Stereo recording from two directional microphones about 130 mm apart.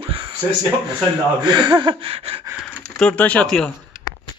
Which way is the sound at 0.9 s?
35° right (ahead or behind).